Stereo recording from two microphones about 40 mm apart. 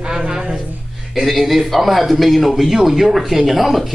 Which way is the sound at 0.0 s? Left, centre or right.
Centre.